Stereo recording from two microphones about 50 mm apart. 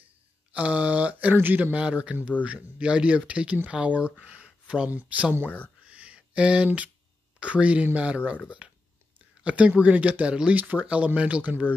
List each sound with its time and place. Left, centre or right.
0.5 s speech: right
1.8 s speech: right
5.9 s a sound: right
7.3 s speech: right
8.6 s a sound: centre
9.4 s speech: right
10.5 s speech: right